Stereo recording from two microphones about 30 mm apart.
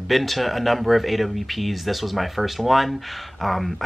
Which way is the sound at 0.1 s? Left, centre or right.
Centre.